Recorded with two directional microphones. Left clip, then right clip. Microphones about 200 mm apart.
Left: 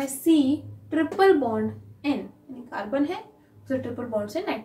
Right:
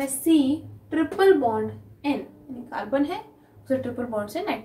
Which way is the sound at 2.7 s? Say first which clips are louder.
Right 2 dB; 20° right (ahead or behind).